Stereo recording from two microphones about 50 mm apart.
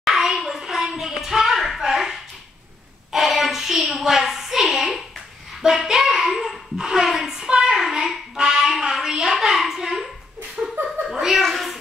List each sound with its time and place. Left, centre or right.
0.0 s hands: centre
3.1 s a sound: centre
6.8 s music: centre
10.6 s laughter: right
11.1 s chuckle: centre